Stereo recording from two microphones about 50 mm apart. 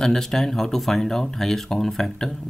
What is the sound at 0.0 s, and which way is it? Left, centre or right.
Speech, centre.